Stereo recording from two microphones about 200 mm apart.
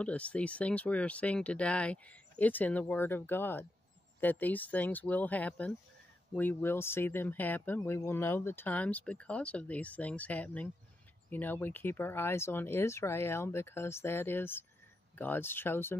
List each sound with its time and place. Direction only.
0.0 s speech: 5° left (ahead or behind)